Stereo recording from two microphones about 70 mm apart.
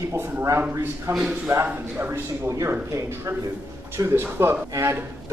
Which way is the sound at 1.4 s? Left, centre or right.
Right.